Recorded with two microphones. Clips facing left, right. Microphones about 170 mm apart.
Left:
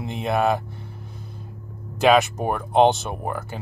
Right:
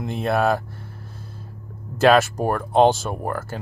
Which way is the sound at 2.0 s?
Centre (ahead or behind).